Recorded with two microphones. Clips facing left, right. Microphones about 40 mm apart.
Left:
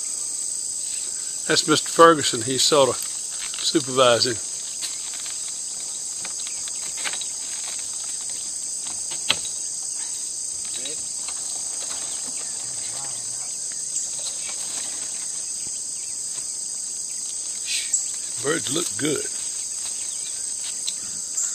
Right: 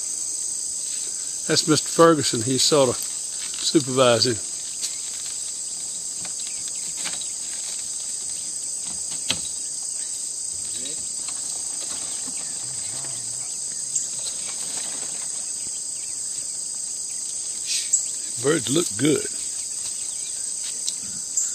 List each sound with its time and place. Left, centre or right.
1.5 s speech: left
2.4 s speech: centre
18.4 s cricket: centre
18.9 s speech: centre